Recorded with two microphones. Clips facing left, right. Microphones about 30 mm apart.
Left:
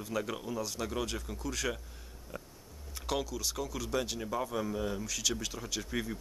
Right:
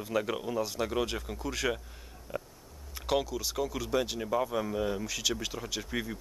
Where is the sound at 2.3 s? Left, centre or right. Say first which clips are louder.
Right 7 dB; centre.